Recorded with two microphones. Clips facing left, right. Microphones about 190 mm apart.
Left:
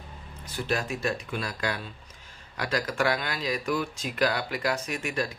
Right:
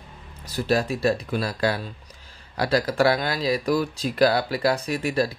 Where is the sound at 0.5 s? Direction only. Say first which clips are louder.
Right 7 dB; 35° right (ahead or behind).